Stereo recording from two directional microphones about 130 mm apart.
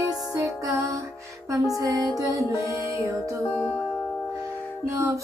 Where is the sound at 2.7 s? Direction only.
20° right (ahead or behind).